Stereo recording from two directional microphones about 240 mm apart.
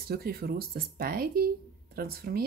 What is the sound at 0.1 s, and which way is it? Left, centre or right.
Speech, right.